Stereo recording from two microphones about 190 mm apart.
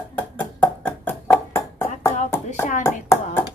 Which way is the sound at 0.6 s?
10° left (ahead or behind).